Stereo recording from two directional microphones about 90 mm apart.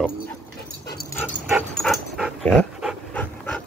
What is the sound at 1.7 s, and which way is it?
Dog, 5° left (ahead or behind).